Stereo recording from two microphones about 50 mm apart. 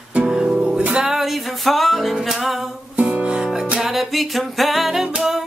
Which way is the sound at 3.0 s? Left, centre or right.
Right.